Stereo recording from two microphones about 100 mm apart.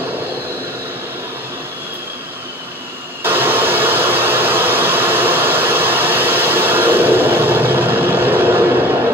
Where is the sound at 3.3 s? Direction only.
20° right (ahead or behind).